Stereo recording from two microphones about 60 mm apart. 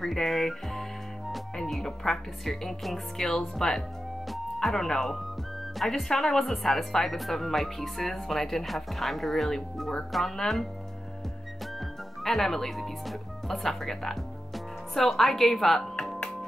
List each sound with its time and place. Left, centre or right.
0.0 s speech: centre